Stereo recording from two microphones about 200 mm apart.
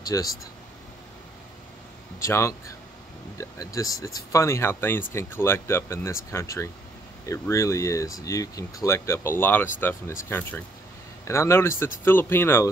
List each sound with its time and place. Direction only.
0.0 s speech: 15° left (ahead or behind)
2.2 s speech: 15° left (ahead or behind)
11.2 s speech: 15° left (ahead or behind)